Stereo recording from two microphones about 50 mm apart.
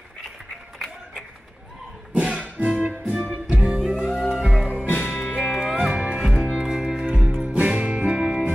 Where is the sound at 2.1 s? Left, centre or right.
Right.